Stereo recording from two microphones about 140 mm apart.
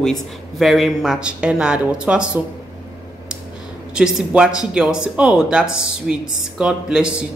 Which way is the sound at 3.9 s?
5° right (ahead or behind).